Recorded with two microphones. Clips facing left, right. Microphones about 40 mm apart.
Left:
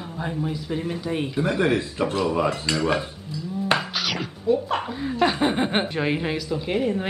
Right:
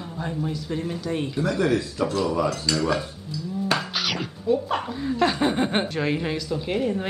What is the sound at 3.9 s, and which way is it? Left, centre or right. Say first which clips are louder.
Speech: even; centre.